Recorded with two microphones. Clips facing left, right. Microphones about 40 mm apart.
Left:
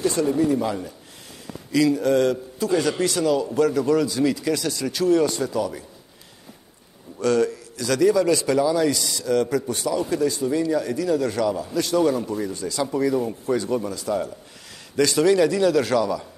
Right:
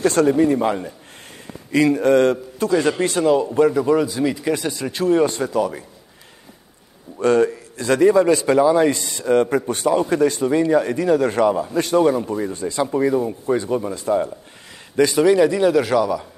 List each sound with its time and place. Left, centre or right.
0.0 s speech: right
0.4 s a man's voice: right
7.2 s a man's voice: right
15.0 s a man's voice: centre